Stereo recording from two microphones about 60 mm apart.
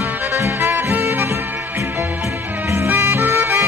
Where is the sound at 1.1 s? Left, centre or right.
Right.